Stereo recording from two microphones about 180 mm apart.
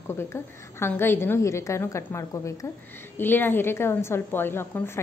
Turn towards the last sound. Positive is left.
turn(degrees=10)  # may be behind; listen again after turning